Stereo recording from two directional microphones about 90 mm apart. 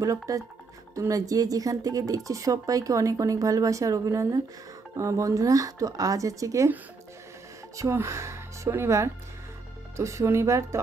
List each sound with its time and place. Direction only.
0.0 s speech: 40° right (ahead or behind)
7.7 s speech: 35° right (ahead or behind)